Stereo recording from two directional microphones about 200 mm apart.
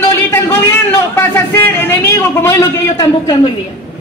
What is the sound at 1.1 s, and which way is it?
A man's voice, 10° left (ahead or behind).